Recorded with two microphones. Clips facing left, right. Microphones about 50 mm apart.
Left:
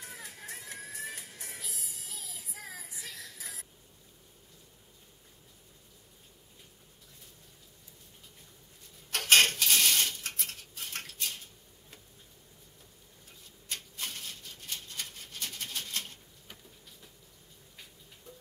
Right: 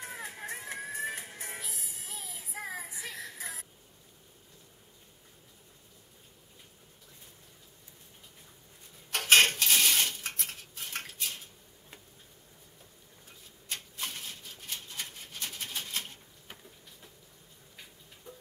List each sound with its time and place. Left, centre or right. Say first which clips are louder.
0.0 s music: right 5 dB; right
9.1 s a sound: right 1 dB; centre
13.7 s rub: right 1 dB; centre